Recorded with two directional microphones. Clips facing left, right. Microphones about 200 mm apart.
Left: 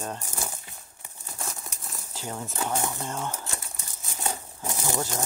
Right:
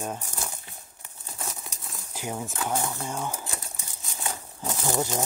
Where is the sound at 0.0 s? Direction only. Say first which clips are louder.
Right 2 dB; 10° right (ahead or behind).